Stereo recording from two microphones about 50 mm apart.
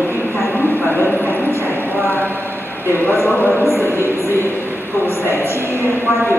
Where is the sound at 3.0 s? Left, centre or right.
Left.